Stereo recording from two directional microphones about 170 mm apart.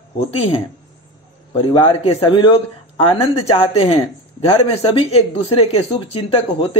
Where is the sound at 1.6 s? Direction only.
30° left (ahead or behind).